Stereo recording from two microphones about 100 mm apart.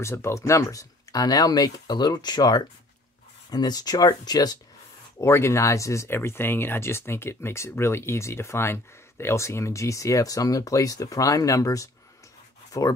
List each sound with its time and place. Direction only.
0.0 s speech: 25° left (ahead or behind)
5.2 s speech: 25° left (ahead or behind)